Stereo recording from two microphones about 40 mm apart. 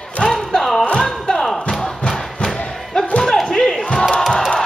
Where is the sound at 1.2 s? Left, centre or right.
Centre.